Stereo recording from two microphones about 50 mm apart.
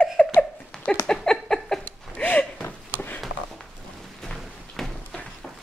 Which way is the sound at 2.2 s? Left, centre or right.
Left.